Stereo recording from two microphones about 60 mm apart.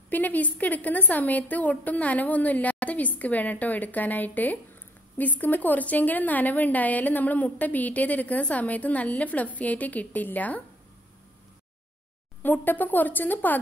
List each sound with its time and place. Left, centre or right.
0.1 s a woman's voice: left
12.4 s speech: left